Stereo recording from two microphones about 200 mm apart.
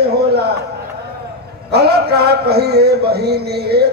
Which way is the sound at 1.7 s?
55° right (ahead or behind).